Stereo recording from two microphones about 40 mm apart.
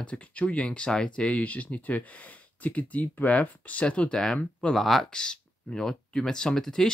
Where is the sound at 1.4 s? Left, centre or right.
Left.